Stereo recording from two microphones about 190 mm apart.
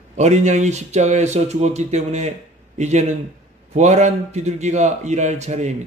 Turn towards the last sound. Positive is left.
turn(degrees=-35)  # may be behind; listen again after turning